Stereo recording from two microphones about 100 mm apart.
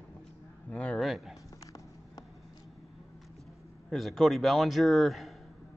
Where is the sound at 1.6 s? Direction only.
35° left (ahead or behind).